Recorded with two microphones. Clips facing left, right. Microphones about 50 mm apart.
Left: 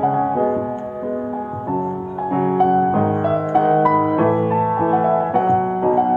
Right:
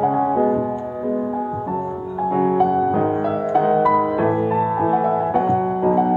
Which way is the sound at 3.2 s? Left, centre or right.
Left.